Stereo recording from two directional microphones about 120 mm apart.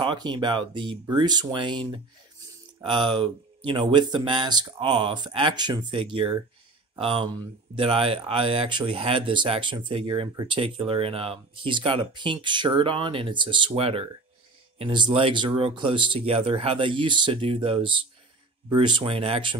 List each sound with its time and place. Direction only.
0.0 s speech: 40° right (ahead or behind)